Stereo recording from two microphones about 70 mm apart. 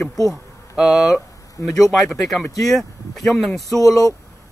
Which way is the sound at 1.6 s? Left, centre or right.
Left.